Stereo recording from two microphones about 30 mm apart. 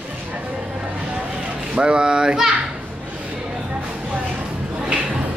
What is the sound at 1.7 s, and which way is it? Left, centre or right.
Speech, right.